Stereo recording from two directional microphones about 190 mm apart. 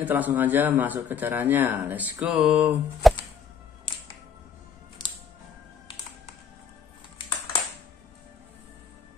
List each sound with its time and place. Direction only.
0.0 s speech: 10° right (ahead or behind)
3.9 s music: 25° left (ahead or behind)